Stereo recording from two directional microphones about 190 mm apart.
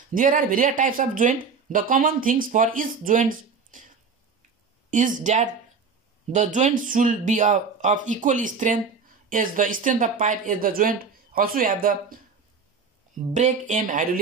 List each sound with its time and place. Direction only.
0.1 s speech: 45° right (ahead or behind)
4.9 s speech: 40° right (ahead or behind)
13.3 s speech: 40° right (ahead or behind)